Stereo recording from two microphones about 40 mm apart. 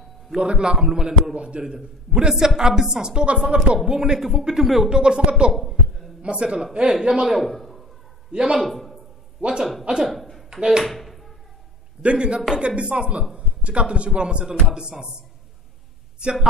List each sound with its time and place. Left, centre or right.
0.4 s a man's voice: right
1.6 s a man's voice: centre
3.9 s speech: centre
4.8 s a man's voice: right
5.5 s a sound: centre
6.2 s a man's voice: right
7.4 s a sound: centre
8.5 s a man's voice: centre
9.4 s a man's voice: right
10.8 s a sound: centre
12.0 s a man's voice: right